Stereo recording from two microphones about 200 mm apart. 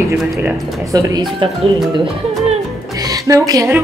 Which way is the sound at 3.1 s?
15° right (ahead or behind).